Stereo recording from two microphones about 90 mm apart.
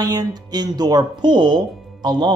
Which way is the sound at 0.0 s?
45° right (ahead or behind).